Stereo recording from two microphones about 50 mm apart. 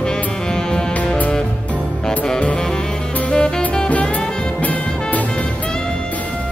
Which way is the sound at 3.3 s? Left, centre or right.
Centre.